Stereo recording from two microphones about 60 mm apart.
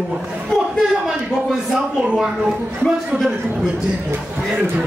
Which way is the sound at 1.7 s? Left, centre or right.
Centre.